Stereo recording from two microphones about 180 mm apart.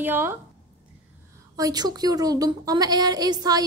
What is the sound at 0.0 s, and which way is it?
Speech, 10° right (ahead or behind).